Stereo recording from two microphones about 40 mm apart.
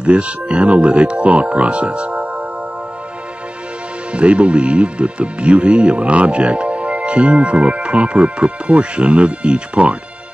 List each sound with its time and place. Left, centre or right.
0.0 s speech: right
4.1 s speech: right